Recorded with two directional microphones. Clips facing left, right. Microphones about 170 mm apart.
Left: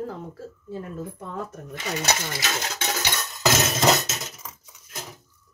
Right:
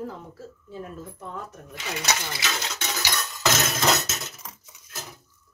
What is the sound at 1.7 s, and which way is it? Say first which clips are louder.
Speech: left 2 dB; 45° left (ahead or behind).